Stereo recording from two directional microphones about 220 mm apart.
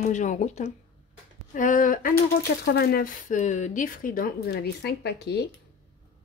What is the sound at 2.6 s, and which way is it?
Speech, 50° left (ahead or behind).